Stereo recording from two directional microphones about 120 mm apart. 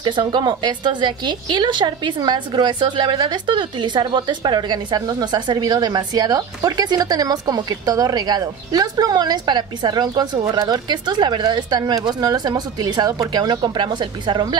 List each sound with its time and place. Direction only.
0.0 s a woman's voice: 40° right (ahead or behind)